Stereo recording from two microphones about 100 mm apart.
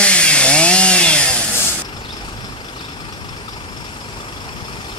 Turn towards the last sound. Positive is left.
turn(degrees=50)  # may be behind; listen again after turning